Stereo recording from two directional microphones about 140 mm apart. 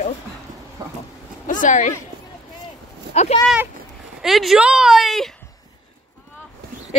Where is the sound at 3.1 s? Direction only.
50° left (ahead or behind).